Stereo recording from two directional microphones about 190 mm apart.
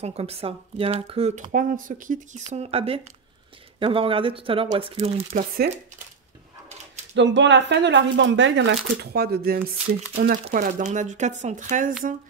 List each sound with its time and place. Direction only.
0.0 s speech: 35° right (ahead or behind)
7.2 s speech: 70° right (ahead or behind); by 11.9 s 40° right (ahead or behind)